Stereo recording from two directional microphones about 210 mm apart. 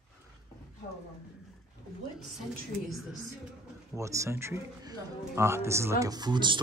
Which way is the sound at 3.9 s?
15° right (ahead or behind).